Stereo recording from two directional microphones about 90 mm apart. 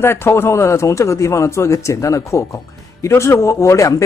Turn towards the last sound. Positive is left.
turn(degrees=35)  # may be behind; listen again after turning